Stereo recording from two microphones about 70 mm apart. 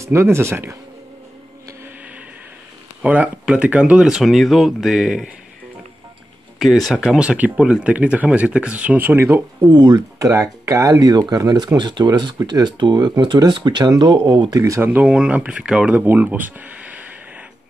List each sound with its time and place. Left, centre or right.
0.0 s speech: right
3.0 s speech: centre
4.0 s speech: centre
6.6 s speech: centre; by 9.7 s right
9.7 s speech: right
10.2 s speech: right
14.8 s speech: right
15.0 s speech: centre
16.0 s speech: right